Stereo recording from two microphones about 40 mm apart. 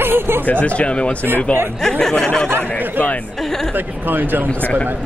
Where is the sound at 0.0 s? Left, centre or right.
Right.